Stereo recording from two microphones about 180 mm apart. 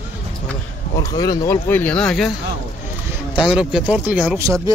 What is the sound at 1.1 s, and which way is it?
Speech, 20° left (ahead or behind).